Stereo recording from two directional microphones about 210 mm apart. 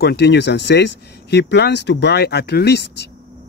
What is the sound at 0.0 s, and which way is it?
Speech, 50° left (ahead or behind).